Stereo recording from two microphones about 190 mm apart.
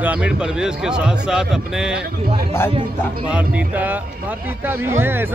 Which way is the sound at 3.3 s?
10° right (ahead or behind).